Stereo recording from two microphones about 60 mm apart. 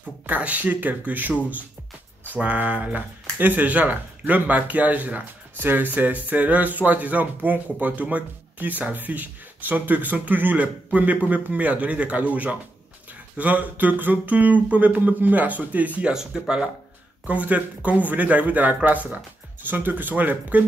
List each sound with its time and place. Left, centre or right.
0.3 s speech: right
16.1 s speech: centre
17.3 s speech: right
19.7 s speech: right